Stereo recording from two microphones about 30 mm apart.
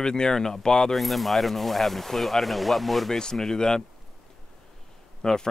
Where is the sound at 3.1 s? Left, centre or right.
Centre.